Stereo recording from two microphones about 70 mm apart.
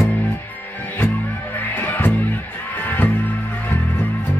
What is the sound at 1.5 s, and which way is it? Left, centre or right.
Music, left.